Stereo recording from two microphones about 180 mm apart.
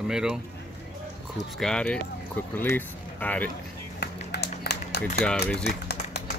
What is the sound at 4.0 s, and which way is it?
Run, 65° left (ahead or behind).